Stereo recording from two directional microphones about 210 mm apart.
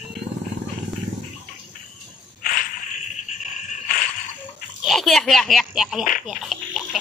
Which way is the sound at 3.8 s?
40° left (ahead or behind).